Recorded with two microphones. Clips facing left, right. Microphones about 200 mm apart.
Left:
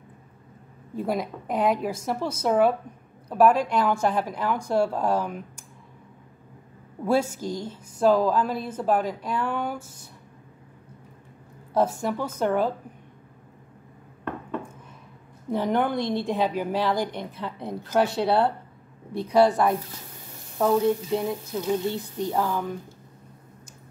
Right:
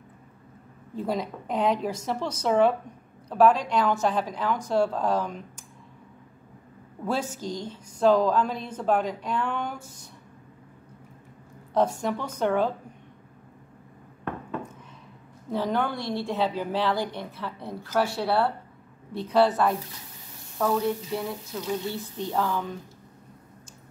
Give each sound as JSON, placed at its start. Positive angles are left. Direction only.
{"t": 0.9, "sound": "a woman's voice", "side_deg": 10}
{"t": 7.1, "sound": "a woman's voice", "side_deg": 10}
{"t": 11.7, "sound": "a woman's voice", "side_deg": 10}
{"t": 15.5, "sound": "a woman's voice", "side_deg": 15}